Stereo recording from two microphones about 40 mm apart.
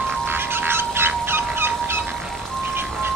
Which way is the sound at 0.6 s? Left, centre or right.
Right.